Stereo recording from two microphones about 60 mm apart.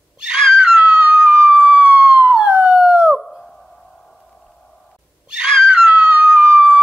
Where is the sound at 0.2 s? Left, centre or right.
Centre.